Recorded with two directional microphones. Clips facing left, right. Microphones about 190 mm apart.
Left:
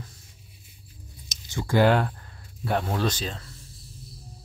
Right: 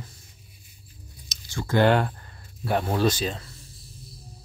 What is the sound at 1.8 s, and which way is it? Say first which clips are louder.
Speech: right 2 dB; centre (ahead or behind).